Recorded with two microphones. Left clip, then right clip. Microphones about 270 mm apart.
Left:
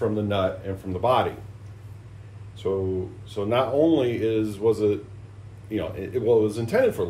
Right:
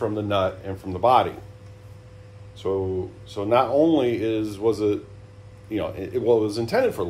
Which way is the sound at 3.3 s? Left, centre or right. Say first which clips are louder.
Right 3 dB; right.